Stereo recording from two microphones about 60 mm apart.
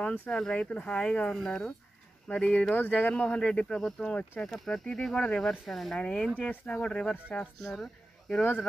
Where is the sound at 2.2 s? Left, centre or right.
Left.